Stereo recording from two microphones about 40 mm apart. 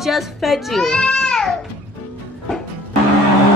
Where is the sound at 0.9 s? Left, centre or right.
Left.